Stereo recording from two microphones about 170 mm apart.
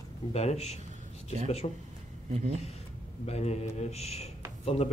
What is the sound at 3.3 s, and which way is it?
A man's voice, 40° left (ahead or behind).